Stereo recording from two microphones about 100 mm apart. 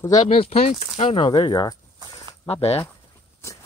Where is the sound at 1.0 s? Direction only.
60° left (ahead or behind); by 1.8 s 45° left (ahead or behind).